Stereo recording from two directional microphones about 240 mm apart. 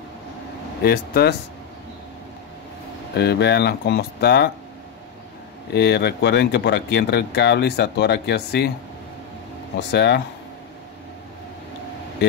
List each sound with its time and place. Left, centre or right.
0.8 s speech: left
3.2 s speech: left
5.7 s speech: left
9.8 s speech: left
12.2 s speech: left